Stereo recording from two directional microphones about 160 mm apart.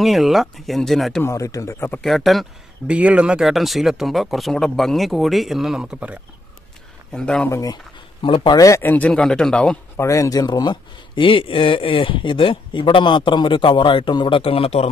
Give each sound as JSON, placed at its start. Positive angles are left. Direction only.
{"t": 0.0, "sound": "speech", "side_deg": 0}
{"t": 1.2, "sound": "speech", "side_deg": 20}
{"t": 2.0, "sound": "speech", "side_deg": 0}
{"t": 7.1, "sound": "speech", "side_deg": 5}
{"t": 7.4, "sound": "speech", "side_deg": 20}
{"t": 9.9, "sound": "speech", "side_deg": 20}